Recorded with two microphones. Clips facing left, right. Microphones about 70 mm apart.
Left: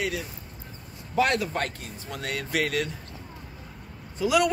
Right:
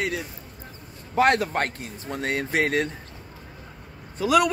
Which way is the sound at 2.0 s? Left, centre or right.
Right.